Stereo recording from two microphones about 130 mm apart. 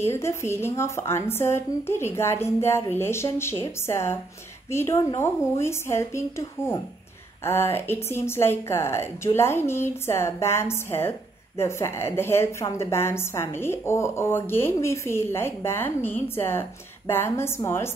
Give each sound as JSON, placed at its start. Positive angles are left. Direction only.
{"t": 0.0, "sound": "speech", "side_deg": 20}